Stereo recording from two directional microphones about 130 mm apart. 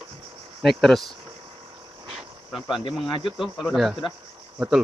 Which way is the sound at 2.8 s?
40° left (ahead or behind).